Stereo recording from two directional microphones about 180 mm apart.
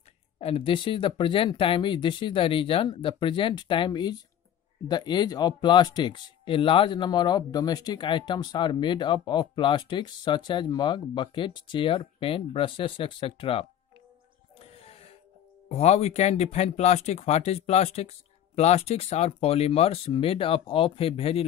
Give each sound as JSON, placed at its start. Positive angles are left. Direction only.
{"t": 0.4, "sound": "speech", "side_deg": 30}
{"t": 15.7, "sound": "speech", "side_deg": 35}